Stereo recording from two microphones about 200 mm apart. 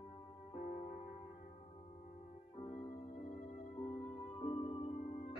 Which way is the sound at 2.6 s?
35° left (ahead or behind).